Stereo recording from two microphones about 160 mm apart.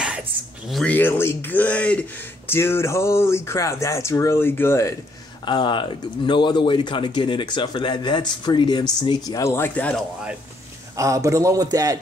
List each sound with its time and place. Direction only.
0.7 s speech: centre (ahead or behind)
0.9 s speech: 15° left (ahead or behind)
5.4 s speech: 30° left (ahead or behind); by 10.0 s 10° left (ahead or behind)
11.0 s a man's voice: 20° right (ahead or behind)